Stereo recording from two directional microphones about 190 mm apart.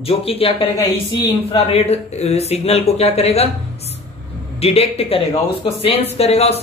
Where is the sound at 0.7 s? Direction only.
20° left (ahead or behind).